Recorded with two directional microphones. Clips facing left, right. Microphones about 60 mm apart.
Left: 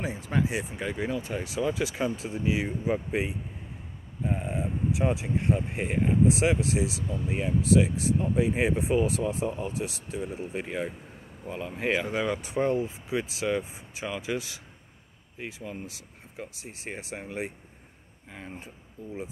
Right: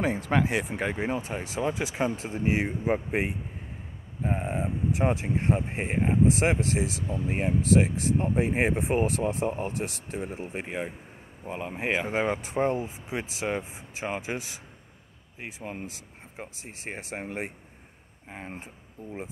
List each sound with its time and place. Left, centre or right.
0.0 s speech: right
0.9 s speech: right
15.6 s speech: right
16.3 s speech: right